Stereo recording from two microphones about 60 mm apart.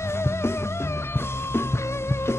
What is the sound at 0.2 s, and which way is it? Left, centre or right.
Music, left.